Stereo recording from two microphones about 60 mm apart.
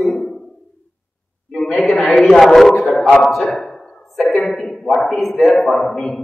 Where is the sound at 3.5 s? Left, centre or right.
Centre.